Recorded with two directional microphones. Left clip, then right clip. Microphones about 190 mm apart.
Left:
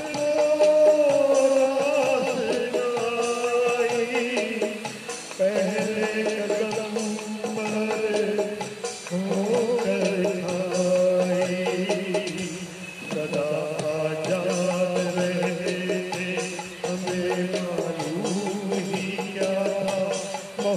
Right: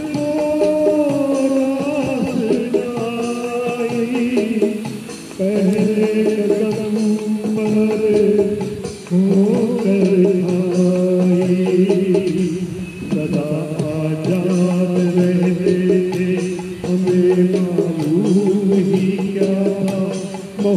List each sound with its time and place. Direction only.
0.2 s music: 25° left (ahead or behind)
14.2 s music: 25° left (ahead or behind)